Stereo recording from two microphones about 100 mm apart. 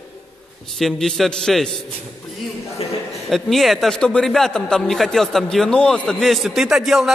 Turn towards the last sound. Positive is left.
turn(degrees=-5)  # may be behind; listen again after turning